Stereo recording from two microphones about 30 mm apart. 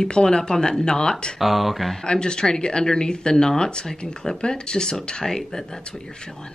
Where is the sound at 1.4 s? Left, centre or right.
Centre.